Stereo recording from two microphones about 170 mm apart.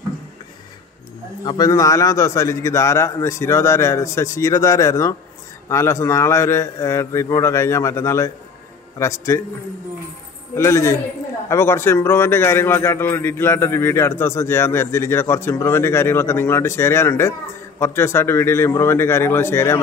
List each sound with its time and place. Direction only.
1.4 s a man's voice: 25° left (ahead or behind)
10.5 s a man's voice: 15° left (ahead or behind)